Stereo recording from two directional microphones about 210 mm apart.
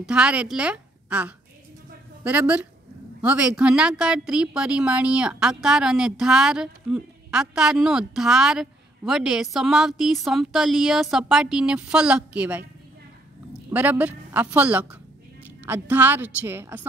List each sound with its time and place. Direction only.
0.0 s a woman's voice: 5° right (ahead or behind)
13.7 s a woman's voice: 10° right (ahead or behind)